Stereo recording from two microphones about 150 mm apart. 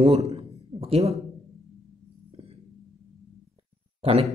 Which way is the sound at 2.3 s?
40° right (ahead or behind).